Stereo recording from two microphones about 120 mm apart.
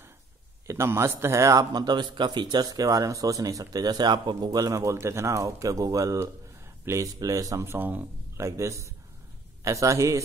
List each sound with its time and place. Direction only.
0.7 s a man's voice: 25° right (ahead or behind)